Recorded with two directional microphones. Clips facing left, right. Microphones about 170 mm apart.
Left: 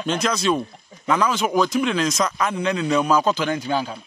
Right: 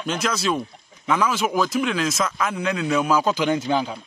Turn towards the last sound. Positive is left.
turn(degrees=-15)  # may be behind; listen again after turning